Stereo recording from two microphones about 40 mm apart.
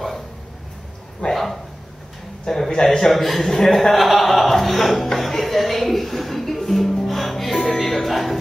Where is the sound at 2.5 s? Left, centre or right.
Centre.